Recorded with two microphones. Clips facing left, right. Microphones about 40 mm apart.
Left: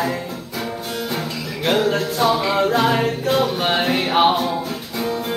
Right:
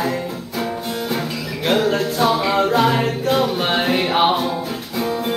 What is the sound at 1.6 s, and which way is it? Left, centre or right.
Music, centre.